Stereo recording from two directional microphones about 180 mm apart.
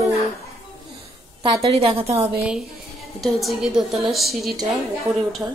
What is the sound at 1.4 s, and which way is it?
Speech, 30° right (ahead or behind).